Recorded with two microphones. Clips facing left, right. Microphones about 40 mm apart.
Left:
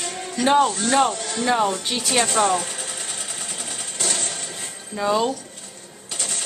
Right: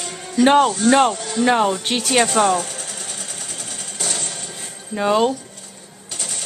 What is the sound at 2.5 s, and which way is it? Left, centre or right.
Speech, centre.